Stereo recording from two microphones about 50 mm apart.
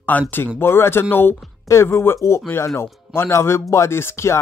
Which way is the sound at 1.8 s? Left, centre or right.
Left.